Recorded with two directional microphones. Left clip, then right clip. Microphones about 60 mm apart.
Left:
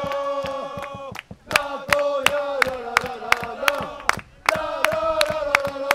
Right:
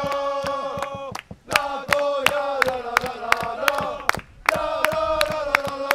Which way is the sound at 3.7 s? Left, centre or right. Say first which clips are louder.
Even; centre.